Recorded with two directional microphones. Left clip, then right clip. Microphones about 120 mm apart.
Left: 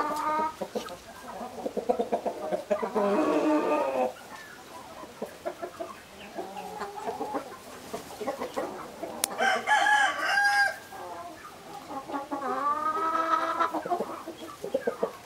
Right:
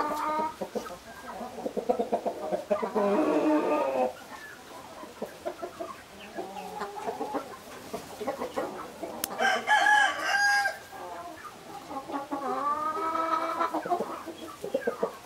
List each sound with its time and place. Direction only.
0.0 s chicken: centre (ahead or behind)
6.3 s chicken: 5° right (ahead or behind)
11.9 s chicken: 5° right (ahead or behind)
14.6 s chicken: 25° right (ahead or behind)
15.0 s chicken: 5° left (ahead or behind)